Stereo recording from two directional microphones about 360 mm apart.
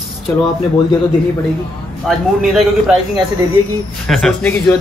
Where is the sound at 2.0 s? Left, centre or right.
Centre.